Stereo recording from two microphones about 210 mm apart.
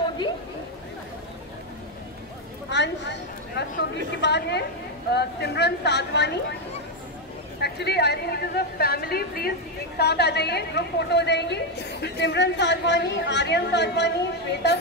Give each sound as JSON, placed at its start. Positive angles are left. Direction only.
{"t": 2.7, "sound": "a sound", "side_deg": 55}
{"t": 4.2, "sound": "a woman's voice", "side_deg": 55}
{"t": 7.6, "sound": "a woman's voice", "side_deg": 50}